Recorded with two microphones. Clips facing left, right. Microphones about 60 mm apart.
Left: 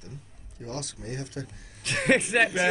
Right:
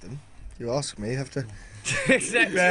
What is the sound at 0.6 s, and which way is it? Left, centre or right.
Speech, right.